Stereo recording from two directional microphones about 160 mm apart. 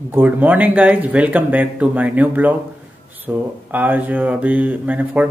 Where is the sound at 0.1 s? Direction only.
10° right (ahead or behind).